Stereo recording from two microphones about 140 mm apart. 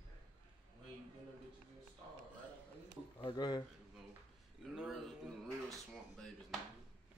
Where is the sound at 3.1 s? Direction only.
35° left (ahead or behind).